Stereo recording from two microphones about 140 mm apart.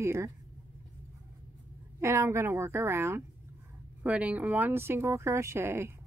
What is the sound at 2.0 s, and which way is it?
A woman's voice, 20° right (ahead or behind).